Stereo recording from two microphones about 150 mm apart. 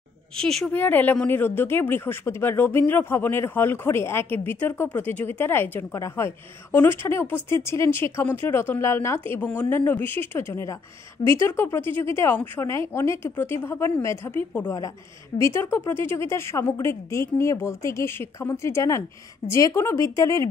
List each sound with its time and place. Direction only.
0.4 s a woman's voice: 5° left (ahead or behind); by 20.4 s 20° left (ahead or behind)